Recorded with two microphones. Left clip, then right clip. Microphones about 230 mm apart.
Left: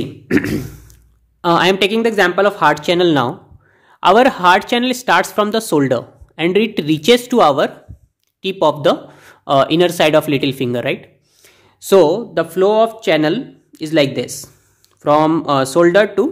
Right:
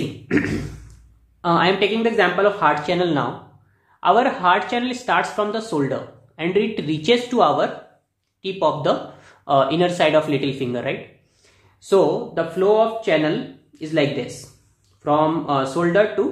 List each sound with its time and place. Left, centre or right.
0.3 s beatboxing: left
1.4 s speech: left